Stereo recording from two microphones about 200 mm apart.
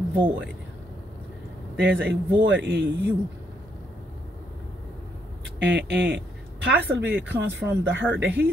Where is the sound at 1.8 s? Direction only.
65° right (ahead or behind).